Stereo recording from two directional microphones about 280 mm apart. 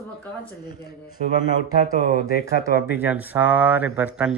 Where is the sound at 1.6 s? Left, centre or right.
Left.